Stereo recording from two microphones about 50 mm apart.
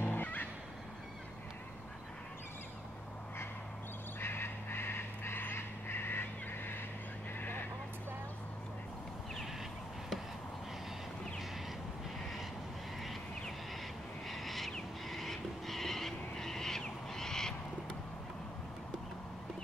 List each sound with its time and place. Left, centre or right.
0.0 s music: left
4.2 s crow: left
7.3 s vehicle: left
14.3 s a sound: centre
15.0 s wild animals: centre